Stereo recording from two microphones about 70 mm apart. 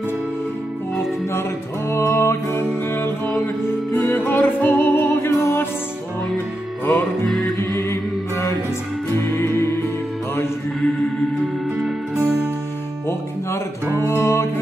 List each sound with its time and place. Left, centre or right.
1.9 s music: left
7.2 s music: centre
7.9 s mantra: left
9.1 s music: left
13.8 s music: right
14.2 s music: left